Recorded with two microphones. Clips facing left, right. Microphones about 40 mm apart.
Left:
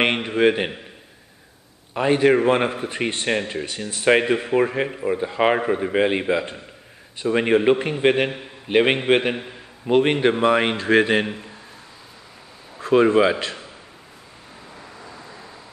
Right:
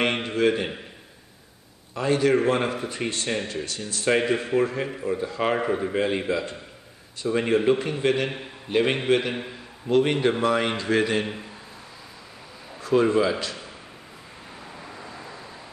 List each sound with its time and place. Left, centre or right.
0.0 s a man's voice: left
2.0 s a man's voice: left
12.7 s a man's voice: left
14.8 s vehicle: centre